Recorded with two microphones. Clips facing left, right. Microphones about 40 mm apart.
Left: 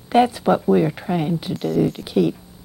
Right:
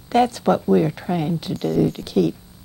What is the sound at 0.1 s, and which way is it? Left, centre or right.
Speech, centre.